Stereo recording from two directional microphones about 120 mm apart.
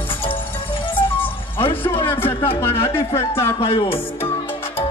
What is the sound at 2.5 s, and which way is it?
Speech, 20° left (ahead or behind).